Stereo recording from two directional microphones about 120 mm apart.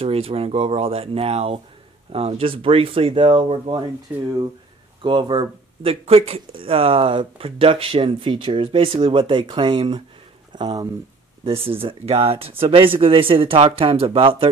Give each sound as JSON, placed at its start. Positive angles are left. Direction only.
{"t": 0.0, "sound": "speech", "side_deg": -55}
{"t": 5.0, "sound": "speech", "side_deg": -40}
{"t": 11.4, "sound": "speech", "side_deg": -50}